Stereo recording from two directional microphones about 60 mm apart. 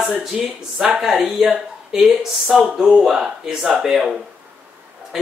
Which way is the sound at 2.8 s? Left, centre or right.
Centre.